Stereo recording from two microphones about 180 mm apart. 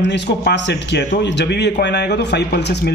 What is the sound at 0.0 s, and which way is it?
Speech, 70° left (ahead or behind).